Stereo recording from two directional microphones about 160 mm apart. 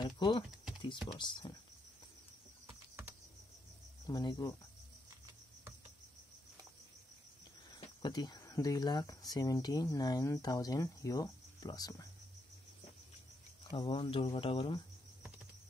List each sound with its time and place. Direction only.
0.0 s speech: 30° left (ahead or behind)
2.6 s typing: 15° right (ahead or behind)
4.1 s speech: 30° left (ahead or behind)
7.7 s speech: 25° left (ahead or behind)
13.7 s speech: 30° left (ahead or behind)